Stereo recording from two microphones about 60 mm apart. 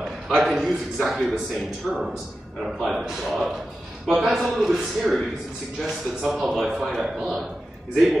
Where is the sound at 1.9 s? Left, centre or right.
Right.